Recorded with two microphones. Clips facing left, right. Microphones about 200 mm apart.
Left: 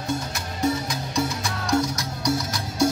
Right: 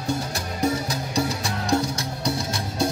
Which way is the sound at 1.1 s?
30° right (ahead or behind).